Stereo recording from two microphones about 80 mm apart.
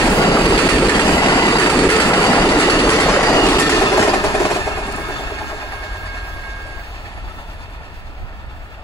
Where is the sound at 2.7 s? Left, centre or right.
Left.